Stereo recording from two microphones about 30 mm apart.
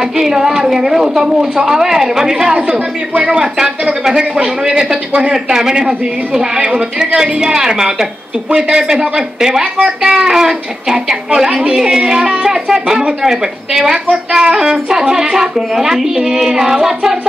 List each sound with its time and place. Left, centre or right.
0.2 s speech: centre
2.5 s a woman's voice: right
14.3 s child singing: right
14.6 s a woman's voice: centre